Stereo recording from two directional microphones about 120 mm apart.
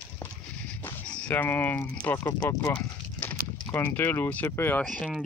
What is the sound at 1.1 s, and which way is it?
Speech, 10° left (ahead or behind).